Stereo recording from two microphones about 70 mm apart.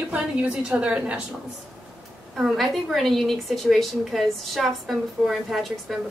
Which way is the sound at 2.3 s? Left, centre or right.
Centre.